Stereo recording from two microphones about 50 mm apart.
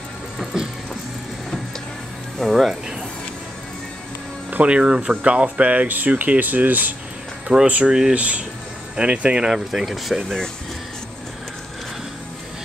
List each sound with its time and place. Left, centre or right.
0.4 s speech: centre
2.3 s speech: centre
4.5 s speech: right
9.5 s speech: centre